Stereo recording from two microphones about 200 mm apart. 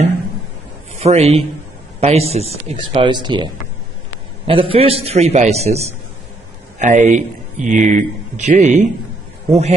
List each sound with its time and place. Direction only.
1.0 s speech: 30° right (ahead or behind)
4.5 s speech: 25° right (ahead or behind)